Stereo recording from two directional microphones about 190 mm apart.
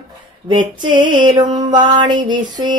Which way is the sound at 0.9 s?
25° right (ahead or behind).